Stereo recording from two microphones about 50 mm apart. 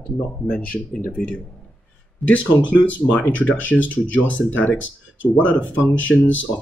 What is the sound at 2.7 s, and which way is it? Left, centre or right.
Speech, left.